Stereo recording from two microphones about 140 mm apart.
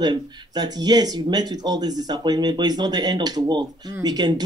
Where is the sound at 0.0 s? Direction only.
30° right (ahead or behind).